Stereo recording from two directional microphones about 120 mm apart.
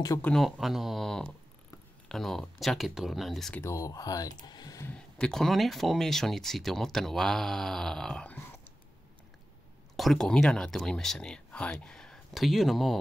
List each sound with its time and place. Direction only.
0.2 s speech: 5° left (ahead or behind)
3.5 s speech: 25° left (ahead or behind)
4.8 s speech: 10° left (ahead or behind)
9.9 s speech: centre (ahead or behind)